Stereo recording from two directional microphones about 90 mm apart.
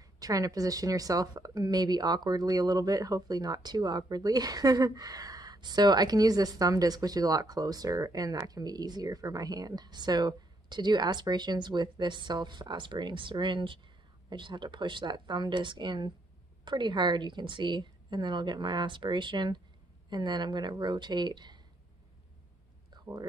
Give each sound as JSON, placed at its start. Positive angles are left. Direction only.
{"t": 0.0, "sound": "a woman's voice", "side_deg": -40}